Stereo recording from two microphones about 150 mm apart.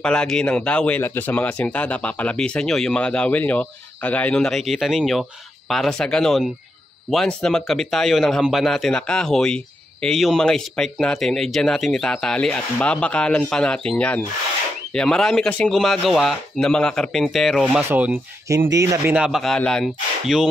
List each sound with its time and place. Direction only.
0.0 s speech: 5° left (ahead or behind)
17.8 s speech: 15° right (ahead or behind)
19.1 s speech: 5° right (ahead or behind)